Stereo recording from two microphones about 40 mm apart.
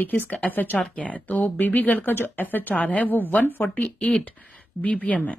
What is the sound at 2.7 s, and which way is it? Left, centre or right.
Speech, left.